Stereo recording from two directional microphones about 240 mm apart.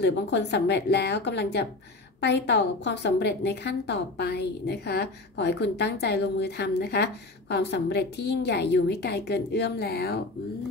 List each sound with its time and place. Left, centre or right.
0.0 s a woman's voice: left